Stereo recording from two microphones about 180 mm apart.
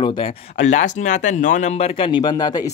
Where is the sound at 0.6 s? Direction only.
40° left (ahead or behind).